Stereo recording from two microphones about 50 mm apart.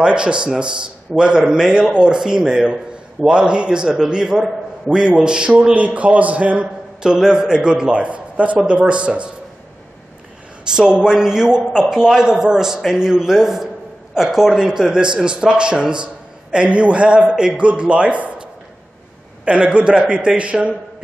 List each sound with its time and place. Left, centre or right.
0.0 s a man's voice: centre
7.0 s a man's voice: centre
10.7 s a man's voice: centre